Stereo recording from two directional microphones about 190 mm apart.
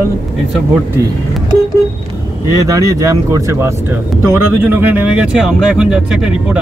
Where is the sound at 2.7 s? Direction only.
15° right (ahead or behind).